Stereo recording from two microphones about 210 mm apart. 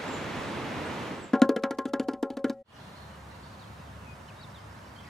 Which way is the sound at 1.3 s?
Centre (ahead or behind).